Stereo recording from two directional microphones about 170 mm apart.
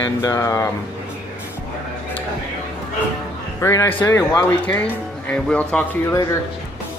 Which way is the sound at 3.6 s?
15° left (ahead or behind).